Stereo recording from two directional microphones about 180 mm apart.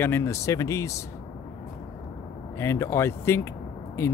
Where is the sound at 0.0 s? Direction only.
15° left (ahead or behind).